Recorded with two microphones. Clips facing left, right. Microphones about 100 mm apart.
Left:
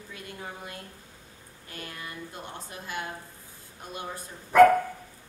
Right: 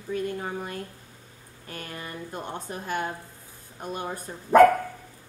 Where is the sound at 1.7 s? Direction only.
45° right (ahead or behind).